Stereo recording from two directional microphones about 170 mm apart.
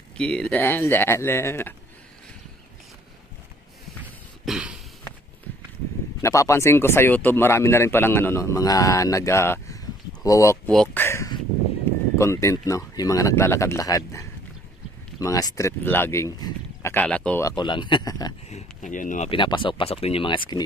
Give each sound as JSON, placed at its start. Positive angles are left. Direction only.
{"t": 0.2, "sound": "speech", "side_deg": 5}
{"t": 4.5, "sound": "a sound", "side_deg": -5}
{"t": 6.2, "sound": "speech", "side_deg": 15}
{"t": 10.7, "sound": "speech", "side_deg": 5}
{"t": 11.1, "sound": "a sound", "side_deg": 15}
{"t": 12.2, "sound": "speech", "side_deg": 15}
{"t": 16.9, "sound": "speech", "side_deg": 5}
{"t": 18.5, "sound": "speech", "side_deg": 45}
{"t": 19.3, "sound": "speech", "side_deg": 30}